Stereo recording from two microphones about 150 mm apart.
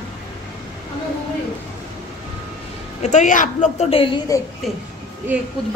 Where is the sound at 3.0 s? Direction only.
55° left (ahead or behind); by 4.2 s 35° left (ahead or behind).